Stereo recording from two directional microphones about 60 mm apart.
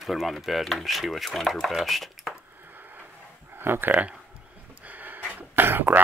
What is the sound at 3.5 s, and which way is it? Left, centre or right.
Speech, right.